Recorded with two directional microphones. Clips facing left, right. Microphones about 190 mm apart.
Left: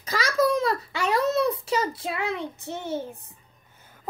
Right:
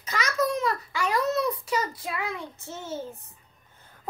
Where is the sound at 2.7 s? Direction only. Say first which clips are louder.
Left 5 dB; 60° left (ahead or behind).